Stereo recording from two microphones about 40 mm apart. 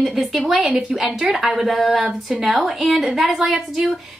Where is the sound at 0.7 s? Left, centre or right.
Right.